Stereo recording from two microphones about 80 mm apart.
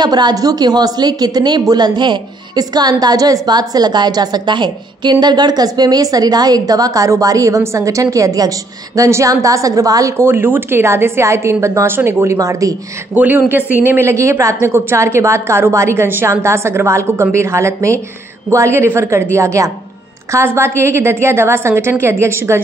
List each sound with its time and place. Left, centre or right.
0.0 s a woman's voice: right
10.1 s a woman's voice: right
13.1 s speech: right
13.8 s a woman's voice: right